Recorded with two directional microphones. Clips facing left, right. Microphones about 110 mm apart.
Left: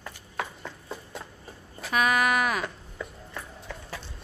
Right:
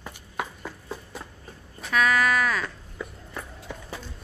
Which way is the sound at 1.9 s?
15° left (ahead or behind).